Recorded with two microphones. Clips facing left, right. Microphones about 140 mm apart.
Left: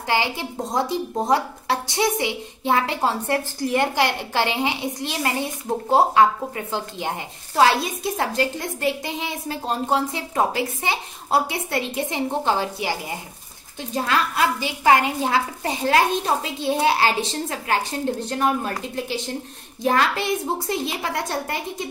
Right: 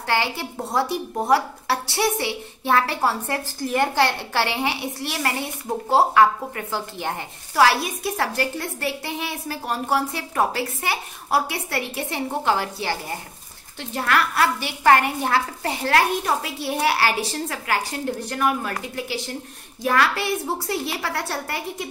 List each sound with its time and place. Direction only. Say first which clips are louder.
0.0 s a woman's voice: left 1 dB; 15° left (ahead or behind)